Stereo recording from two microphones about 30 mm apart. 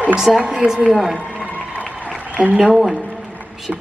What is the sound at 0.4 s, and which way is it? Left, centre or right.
Speech, right.